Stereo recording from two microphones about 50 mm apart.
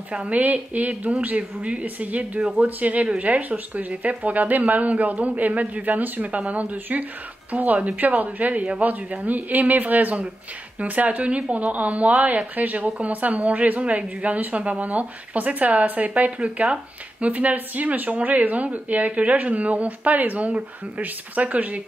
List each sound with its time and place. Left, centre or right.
0.1 s a woman's voice: right
16.1 s speech: right